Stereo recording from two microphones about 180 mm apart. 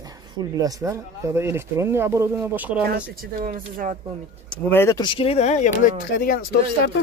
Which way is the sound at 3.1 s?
50° right (ahead or behind).